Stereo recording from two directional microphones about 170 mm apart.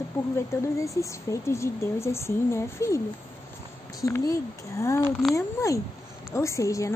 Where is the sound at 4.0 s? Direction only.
20° left (ahead or behind).